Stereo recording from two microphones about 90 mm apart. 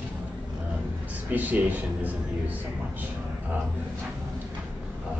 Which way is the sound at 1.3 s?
20° right (ahead or behind).